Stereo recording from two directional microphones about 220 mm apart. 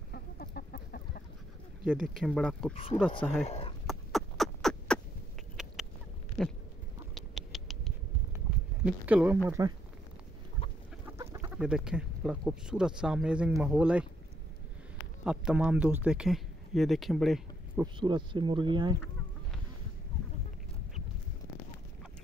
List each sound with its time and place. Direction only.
0.1 s chicken: 45° left (ahead or behind)
1.9 s speech: centre (ahead or behind)
2.7 s speech: 25° left (ahead or behind)
3.8 s a sound: centre (ahead or behind)
7.2 s rodents: centre (ahead or behind)
8.8 s speech: 5° right (ahead or behind)
11.1 s speech: 15° right (ahead or behind)
15.2 s speech: 5° right (ahead or behind)
17.9 s speech: 20° right (ahead or behind)